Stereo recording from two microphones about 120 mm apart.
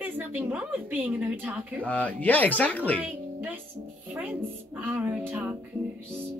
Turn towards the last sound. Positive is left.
turn(degrees=-15)  # may be behind; listen again after turning